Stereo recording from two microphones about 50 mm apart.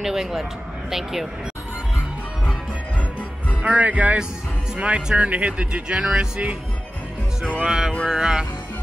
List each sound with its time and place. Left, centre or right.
0.0 s speech: centre
3.6 s speech: right
7.5 s speech: right